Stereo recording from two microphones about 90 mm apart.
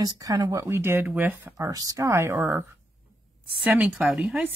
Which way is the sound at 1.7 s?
40° right (ahead or behind).